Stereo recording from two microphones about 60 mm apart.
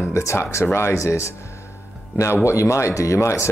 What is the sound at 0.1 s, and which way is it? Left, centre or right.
Speech, left.